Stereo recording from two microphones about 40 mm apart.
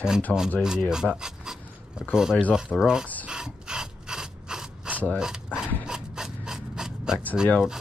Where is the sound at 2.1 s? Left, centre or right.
Centre.